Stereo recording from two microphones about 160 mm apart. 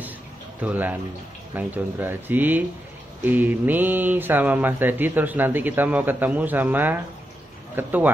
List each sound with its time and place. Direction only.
0.6 s speech: 10° right (ahead or behind)